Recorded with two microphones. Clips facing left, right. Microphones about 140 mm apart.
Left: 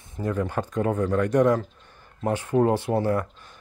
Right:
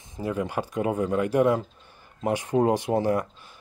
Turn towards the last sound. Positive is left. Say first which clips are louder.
# even
turn(degrees=-15)  # may be behind; listen again after turning